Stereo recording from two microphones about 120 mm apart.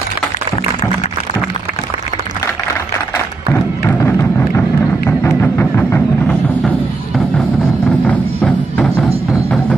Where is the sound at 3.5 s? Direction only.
20° left (ahead or behind).